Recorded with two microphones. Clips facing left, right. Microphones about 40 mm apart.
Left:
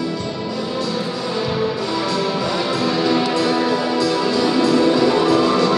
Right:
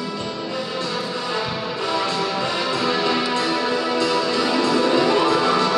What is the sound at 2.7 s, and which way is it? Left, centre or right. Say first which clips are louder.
Music: left 3 dB; right.